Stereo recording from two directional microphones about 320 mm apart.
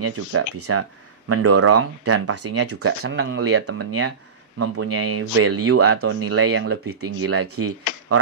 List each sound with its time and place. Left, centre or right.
0.0 s speech: right
2.8 s speech: right
6.9 s speech: right
7.2 s speech: right